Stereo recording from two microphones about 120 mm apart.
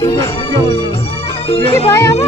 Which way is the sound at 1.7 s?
25° left (ahead or behind).